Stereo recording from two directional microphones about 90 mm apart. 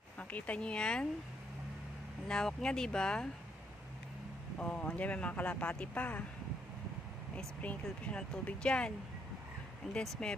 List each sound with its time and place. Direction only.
0.2 s speech: 15° left (ahead or behind)
2.2 s speech: 10° left (ahead or behind)
4.6 s speech: 15° left (ahead or behind)
7.3 s speech: 10° left (ahead or behind)
9.9 s speech: 10° left (ahead or behind)